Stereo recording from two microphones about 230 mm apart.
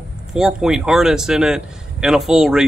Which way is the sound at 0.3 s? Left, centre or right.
Centre.